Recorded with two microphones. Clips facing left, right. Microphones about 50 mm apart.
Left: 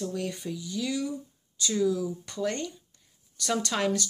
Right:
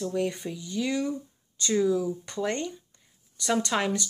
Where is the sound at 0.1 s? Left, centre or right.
Centre.